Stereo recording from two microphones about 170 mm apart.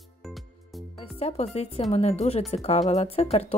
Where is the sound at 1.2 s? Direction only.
40° left (ahead or behind).